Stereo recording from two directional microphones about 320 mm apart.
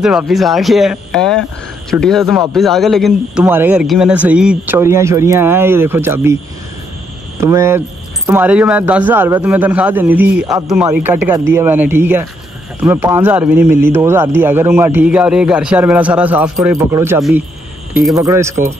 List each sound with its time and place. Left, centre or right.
0.0 s a man's voice: centre
7.3 s a man's voice: centre